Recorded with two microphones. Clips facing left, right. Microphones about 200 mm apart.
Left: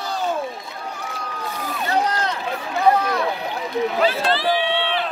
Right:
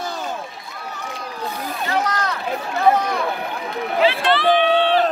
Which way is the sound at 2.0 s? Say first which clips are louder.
Even; 30° left (ahead or behind).